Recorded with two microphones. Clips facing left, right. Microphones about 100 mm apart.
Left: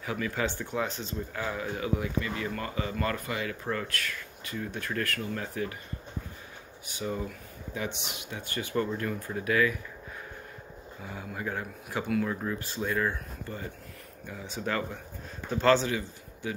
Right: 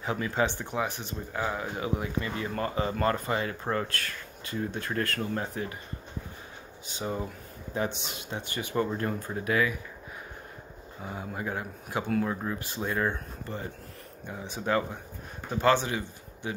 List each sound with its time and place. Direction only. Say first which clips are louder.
0.0 s speech: right 3 dB; 25° right (ahead or behind)
6.9 s speech: even; 25° right (ahead or behind)
8.4 s speech: right 1 dB; 20° right (ahead or behind)
8.9 s speech: right 1 dB; 30° right (ahead or behind)
11.0 s speech: right 3 dB; 30° right (ahead or behind)